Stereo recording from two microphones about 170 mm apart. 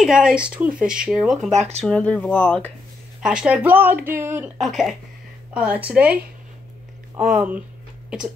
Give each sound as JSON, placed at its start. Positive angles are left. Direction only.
{"t": 0.0, "sound": "speech", "side_deg": -5}
{"t": 1.5, "sound": "speech", "side_deg": -40}
{"t": 1.9, "sound": "speech", "side_deg": 5}
{"t": 3.2, "sound": "speech", "side_deg": -5}
{"t": 4.6, "sound": "speech", "side_deg": 0}
{"t": 7.3, "sound": "speech", "side_deg": -10}